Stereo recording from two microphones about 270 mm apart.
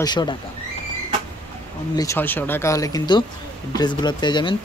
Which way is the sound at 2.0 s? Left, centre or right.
Centre.